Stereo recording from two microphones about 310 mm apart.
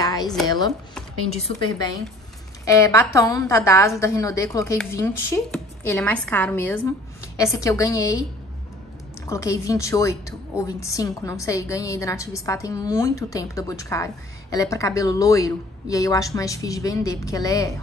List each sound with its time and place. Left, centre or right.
0.0 s a sound: centre
1.3 s a woman's voice: centre
9.3 s a woman's voice: centre